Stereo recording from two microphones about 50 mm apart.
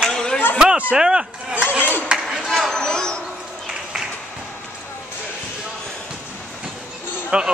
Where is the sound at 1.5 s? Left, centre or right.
Right.